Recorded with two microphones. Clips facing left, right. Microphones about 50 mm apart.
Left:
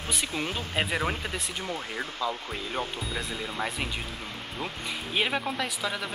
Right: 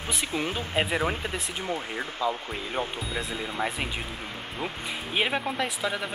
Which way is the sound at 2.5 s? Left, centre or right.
Centre.